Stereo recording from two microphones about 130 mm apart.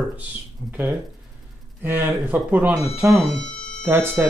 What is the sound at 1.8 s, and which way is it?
Speech, 15° right (ahead or behind).